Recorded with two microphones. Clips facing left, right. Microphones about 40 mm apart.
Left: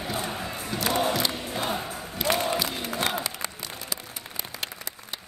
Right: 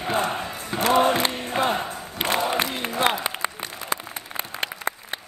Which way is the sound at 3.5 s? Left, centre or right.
Right.